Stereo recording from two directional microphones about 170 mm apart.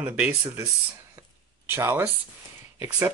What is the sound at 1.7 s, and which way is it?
Speech, 15° right (ahead or behind).